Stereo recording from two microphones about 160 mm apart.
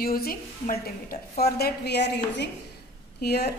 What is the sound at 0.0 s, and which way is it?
A woman's voice, 65° left (ahead or behind).